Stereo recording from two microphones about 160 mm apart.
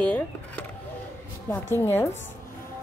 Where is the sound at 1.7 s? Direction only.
15° left (ahead or behind).